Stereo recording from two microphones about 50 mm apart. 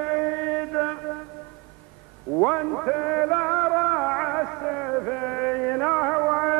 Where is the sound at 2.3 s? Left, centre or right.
Centre.